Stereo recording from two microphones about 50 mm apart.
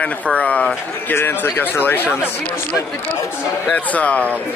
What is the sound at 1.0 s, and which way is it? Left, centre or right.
Speech, left.